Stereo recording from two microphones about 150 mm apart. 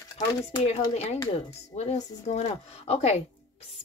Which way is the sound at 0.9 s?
45° left (ahead or behind).